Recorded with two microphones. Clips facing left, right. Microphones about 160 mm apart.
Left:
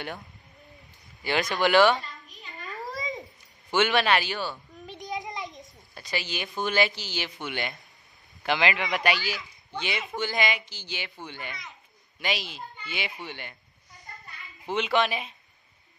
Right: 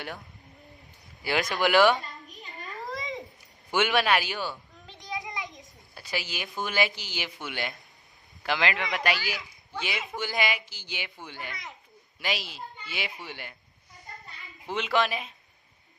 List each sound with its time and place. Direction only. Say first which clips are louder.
1.2 s speech: left 1 dB; 5° right (ahead or behind)
2.7 s a sound: left 1 dB; centre (ahead or behind)
3.7 s speech: left 1 dB; 10° right (ahead or behind)
4.8 s a sound: left 3 dB; 20° left (ahead or behind)
5.6 s a woman's voice: left 2 dB; 5° right (ahead or behind)
14.2 s children playing: left 1 dB; 20° right (ahead or behind)
14.7 s speech: left 2 dB; centre (ahead or behind)